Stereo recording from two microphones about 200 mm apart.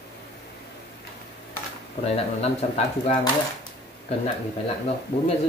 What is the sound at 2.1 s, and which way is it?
Speech, 30° left (ahead or behind).